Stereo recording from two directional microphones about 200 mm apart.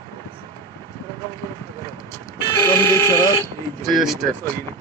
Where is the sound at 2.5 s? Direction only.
15° left (ahead or behind).